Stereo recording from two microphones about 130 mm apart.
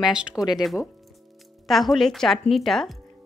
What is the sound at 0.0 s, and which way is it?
Speech, 5° right (ahead or behind).